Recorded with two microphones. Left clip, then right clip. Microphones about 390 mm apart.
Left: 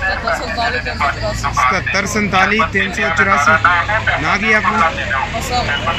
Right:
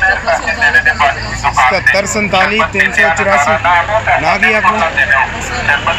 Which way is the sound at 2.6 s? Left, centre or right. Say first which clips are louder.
Right 6 dB; centre.